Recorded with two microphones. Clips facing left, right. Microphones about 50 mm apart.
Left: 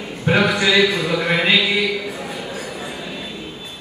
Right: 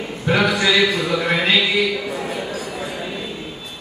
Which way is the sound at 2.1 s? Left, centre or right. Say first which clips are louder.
Right 3 dB; right.